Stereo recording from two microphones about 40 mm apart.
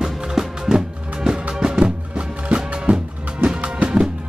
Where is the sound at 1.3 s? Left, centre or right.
Right.